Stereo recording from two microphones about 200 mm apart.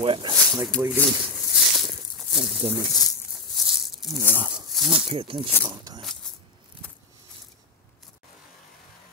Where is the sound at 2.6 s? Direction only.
30° right (ahead or behind).